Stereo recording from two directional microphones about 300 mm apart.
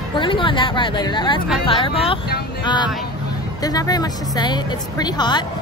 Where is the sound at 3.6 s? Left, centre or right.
Centre.